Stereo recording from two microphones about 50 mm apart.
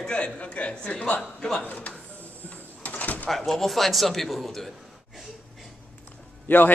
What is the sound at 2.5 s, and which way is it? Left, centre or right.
Door, left.